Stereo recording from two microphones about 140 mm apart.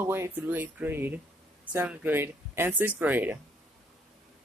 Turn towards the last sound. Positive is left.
turn(degrees=-15)  # may be behind; listen again after turning